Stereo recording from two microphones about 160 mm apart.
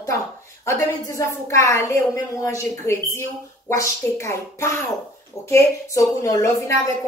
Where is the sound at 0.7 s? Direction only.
20° left (ahead or behind).